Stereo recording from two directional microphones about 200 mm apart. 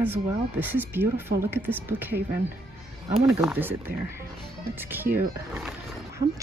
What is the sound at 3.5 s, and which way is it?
Speech, 10° right (ahead or behind).